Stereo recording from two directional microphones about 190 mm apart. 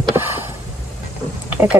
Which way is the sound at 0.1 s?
10° right (ahead or behind).